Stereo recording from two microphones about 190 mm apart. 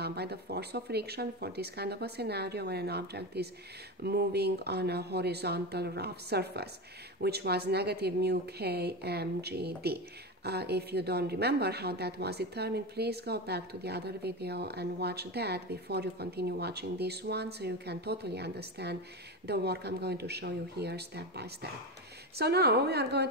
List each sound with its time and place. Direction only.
0.0 s a woman's voice: 60° right (ahead or behind)